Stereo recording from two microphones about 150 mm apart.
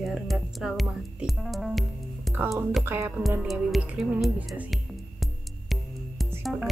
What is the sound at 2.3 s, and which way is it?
Music, centre (ahead or behind).